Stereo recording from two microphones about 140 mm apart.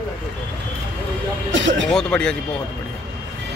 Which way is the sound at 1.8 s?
5° left (ahead or behind).